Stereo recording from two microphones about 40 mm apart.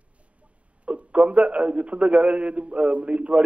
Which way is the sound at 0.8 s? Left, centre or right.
Right.